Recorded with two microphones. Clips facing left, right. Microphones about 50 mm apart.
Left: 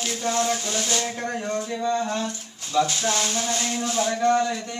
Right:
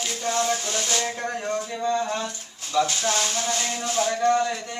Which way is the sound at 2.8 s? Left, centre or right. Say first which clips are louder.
Even; centre.